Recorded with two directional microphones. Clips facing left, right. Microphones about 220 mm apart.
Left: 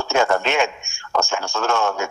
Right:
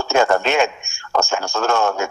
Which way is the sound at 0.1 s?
40° right (ahead or behind).